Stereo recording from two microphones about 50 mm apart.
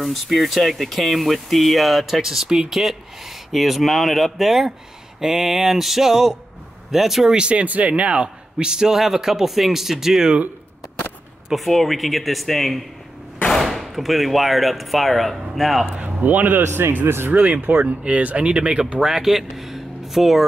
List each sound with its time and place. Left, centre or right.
0.0 s speech: centre
7.3 s a man's voice: right
11.5 s speech: centre
15.9 s a man's voice: right
16.6 s speech: right
17.3 s speech: right
18.0 s speech: right
18.9 s speech: centre